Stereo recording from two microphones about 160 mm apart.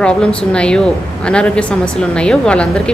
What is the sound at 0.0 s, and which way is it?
A woman's voice, 5° left (ahead or behind).